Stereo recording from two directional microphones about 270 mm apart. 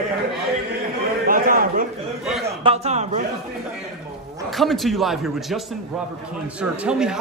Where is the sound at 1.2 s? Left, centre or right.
Right.